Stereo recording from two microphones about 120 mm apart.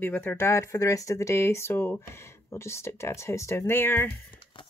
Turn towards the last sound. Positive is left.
turn(degrees=15)  # may be behind; listen again after turning